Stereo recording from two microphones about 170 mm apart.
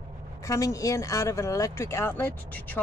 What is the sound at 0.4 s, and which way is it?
Speech, 20° left (ahead or behind).